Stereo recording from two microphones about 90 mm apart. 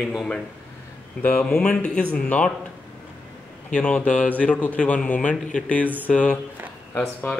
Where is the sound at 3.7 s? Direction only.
10° left (ahead or behind).